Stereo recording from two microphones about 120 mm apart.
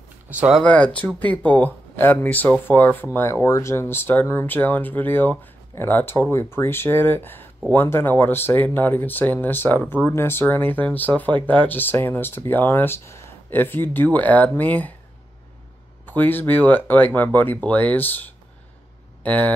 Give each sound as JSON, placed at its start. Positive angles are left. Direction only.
{"t": 0.3, "sound": "speech", "side_deg": -10}
{"t": 0.6, "sound": "speech", "side_deg": 10}
{"t": 16.1, "sound": "speech", "side_deg": 15}